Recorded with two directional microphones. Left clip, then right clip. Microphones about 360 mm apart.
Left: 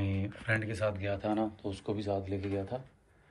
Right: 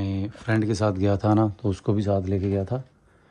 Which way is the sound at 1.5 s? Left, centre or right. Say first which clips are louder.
Right 10 dB; right.